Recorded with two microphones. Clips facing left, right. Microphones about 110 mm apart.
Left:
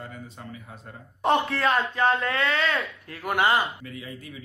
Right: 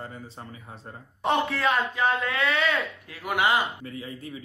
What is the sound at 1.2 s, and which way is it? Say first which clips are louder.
Speech: left 2 dB; centre (ahead or behind).